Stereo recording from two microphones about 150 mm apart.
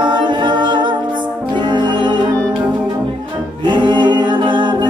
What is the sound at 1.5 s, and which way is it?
Music, 30° right (ahead or behind).